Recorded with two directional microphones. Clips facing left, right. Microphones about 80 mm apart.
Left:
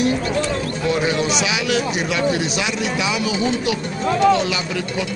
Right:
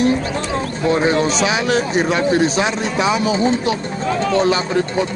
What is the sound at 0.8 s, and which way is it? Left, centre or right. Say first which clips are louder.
A man's voice: right 4 dB; right.